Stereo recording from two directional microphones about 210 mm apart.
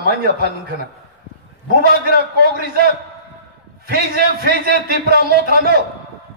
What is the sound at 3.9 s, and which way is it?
A man's voice, 50° right (ahead or behind).